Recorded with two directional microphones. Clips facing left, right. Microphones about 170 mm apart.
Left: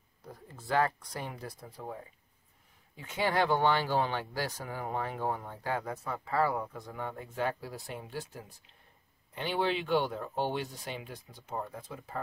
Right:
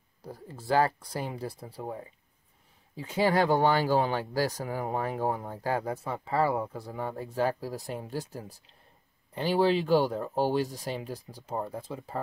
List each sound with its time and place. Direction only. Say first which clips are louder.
0.2 s speech: right 6 dB; 30° right (ahead or behind)
3.0 s speech: right 5 dB; 35° right (ahead or behind)